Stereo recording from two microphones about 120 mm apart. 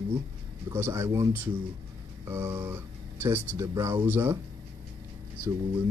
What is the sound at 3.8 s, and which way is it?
Speech, 20° right (ahead or behind).